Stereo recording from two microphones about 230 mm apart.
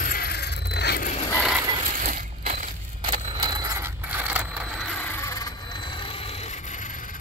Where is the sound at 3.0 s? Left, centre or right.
Centre.